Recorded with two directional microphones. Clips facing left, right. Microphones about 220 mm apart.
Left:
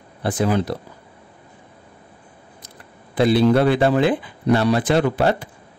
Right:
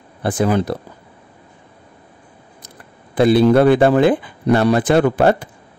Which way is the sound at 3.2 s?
50° right (ahead or behind).